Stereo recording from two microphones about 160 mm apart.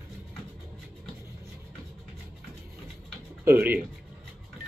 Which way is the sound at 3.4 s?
15° right (ahead or behind).